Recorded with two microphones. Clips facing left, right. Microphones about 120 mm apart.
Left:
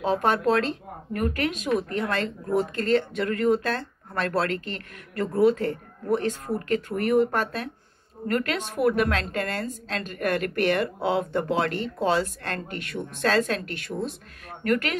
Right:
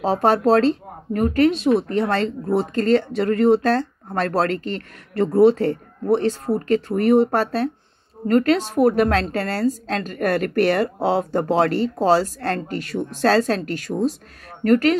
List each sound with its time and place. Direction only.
0.0 s speech: 35° right (ahead or behind)